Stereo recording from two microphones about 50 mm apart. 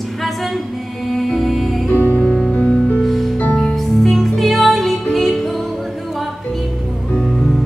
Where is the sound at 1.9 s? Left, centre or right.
Left.